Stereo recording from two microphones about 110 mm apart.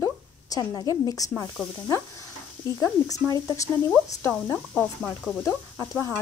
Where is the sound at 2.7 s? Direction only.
30° left (ahead or behind).